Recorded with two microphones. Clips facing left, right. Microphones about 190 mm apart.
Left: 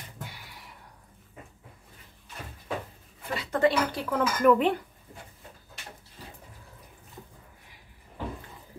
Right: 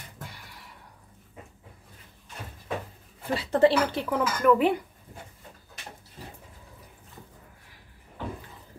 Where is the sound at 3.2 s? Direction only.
30° right (ahead or behind).